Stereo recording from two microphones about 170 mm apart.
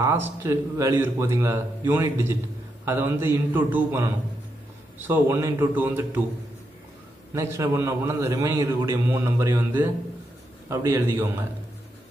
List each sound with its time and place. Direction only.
0.4 s a man's voice: 15° right (ahead or behind)
7.3 s a man's voice: 15° right (ahead or behind)